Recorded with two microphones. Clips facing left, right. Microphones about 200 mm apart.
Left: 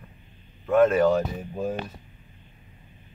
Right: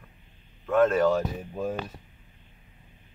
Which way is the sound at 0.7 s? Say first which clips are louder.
Left 3 dB; 10° left (ahead or behind).